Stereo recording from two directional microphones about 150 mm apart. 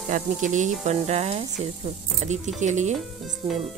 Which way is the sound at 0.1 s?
55° right (ahead or behind).